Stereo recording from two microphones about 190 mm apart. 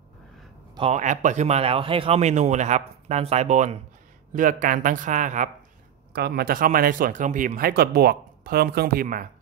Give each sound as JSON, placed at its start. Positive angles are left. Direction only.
{"t": 0.7, "sound": "speech", "side_deg": -35}
{"t": 6.1, "sound": "speech", "side_deg": -55}